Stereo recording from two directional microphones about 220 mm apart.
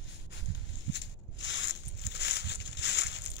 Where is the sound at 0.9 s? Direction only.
55° left (ahead or behind).